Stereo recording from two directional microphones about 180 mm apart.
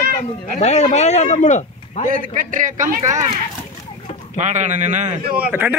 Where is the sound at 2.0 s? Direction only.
50° right (ahead or behind).